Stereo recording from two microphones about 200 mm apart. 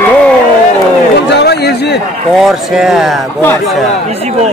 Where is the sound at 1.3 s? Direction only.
55° left (ahead or behind).